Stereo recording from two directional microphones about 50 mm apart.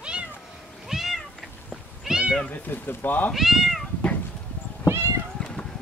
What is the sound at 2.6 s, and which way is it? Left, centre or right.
Speech, left.